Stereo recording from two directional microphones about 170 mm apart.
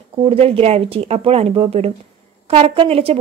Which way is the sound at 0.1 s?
35° right (ahead or behind).